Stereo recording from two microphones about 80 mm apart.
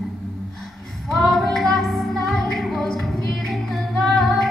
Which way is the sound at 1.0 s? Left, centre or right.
Centre.